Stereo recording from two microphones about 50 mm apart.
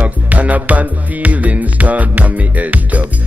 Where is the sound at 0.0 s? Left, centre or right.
Right.